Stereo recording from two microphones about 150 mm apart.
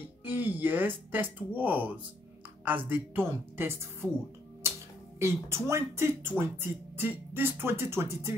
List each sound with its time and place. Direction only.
0.2 s speech: 10° right (ahead or behind)
5.2 s speech: 20° right (ahead or behind)